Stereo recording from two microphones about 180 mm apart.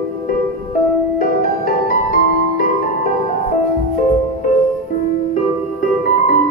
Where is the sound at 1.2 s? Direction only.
50° left (ahead or behind).